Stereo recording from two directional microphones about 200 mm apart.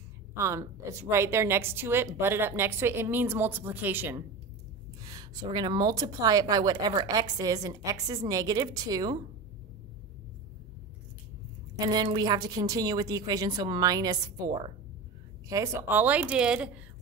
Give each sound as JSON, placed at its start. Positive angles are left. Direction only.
{"t": 0.4, "sound": "a woman's voice", "side_deg": -15}
{"t": 11.8, "sound": "a woman's voice", "side_deg": -20}